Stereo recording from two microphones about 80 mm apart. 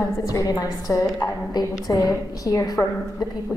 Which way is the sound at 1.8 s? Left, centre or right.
Left.